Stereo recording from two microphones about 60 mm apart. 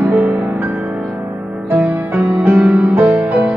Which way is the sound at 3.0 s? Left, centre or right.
Right.